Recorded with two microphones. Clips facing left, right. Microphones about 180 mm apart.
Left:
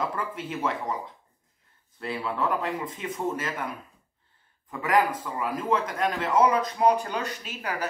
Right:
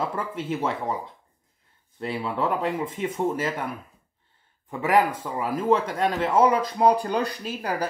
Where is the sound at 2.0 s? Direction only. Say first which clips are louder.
Right 2 dB; 25° right (ahead or behind).